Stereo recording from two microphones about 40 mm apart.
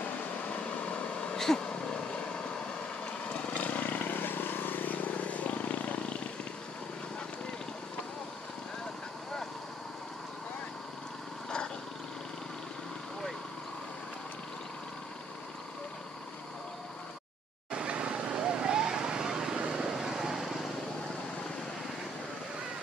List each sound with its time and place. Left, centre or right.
0.5 s vehicle: left
1.3 s a sound: centre
1.6 s vehicle: left
17.6 s vehicle: right; by 20.6 s centre